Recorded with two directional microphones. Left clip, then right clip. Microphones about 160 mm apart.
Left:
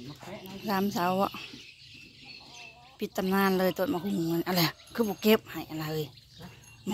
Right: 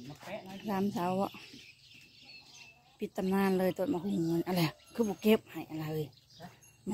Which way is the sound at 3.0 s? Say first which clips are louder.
Left 5 dB; 5° right (ahead or behind).